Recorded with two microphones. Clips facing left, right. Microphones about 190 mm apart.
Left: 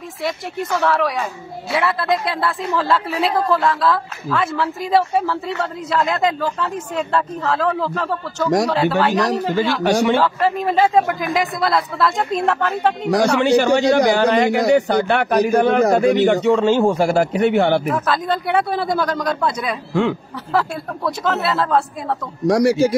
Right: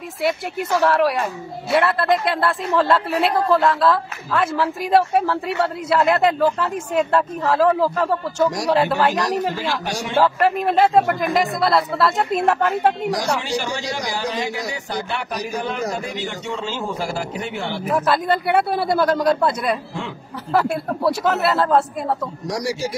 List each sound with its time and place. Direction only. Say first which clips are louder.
0.6 s a woman's voice: right 1 dB; centre (ahead or behind)
9.8 s a man's voice: left 11 dB; 60° left (ahead or behind)
10.1 s a woman's voice: even; 5° right (ahead or behind)
13.1 s a man's voice: left 8 dB; 60° left (ahead or behind)
18.0 s a man's voice: right 1 dB; 5° right (ahead or behind)
19.9 s a man's voice: left 11 dB; 65° left (ahead or behind)
21.2 s a woman's voice: right 1 dB; 5° right (ahead or behind)
22.5 s a man's voice: left 11 dB; 55° left (ahead or behind)